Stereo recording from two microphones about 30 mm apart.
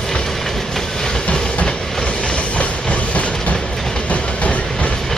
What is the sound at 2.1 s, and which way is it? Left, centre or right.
Train, left.